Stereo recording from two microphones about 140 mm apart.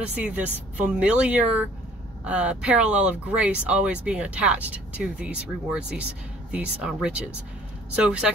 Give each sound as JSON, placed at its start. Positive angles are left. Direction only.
{"t": 0.2, "sound": "speech", "side_deg": -10}